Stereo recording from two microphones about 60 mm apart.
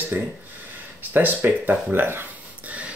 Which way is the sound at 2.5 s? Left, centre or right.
Right.